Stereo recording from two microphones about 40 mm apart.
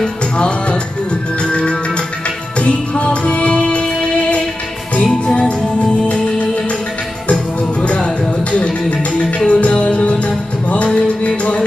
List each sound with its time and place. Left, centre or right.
0.0 s music: left
7.8 s music: left